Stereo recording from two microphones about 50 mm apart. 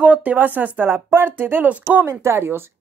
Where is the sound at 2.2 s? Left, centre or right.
Right.